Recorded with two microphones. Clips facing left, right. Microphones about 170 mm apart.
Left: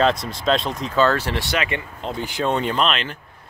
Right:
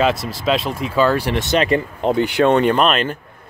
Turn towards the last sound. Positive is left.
turn(degrees=-50)  # may be behind; listen again after turning